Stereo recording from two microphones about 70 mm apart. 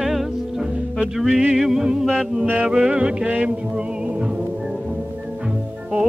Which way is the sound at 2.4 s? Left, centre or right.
Right.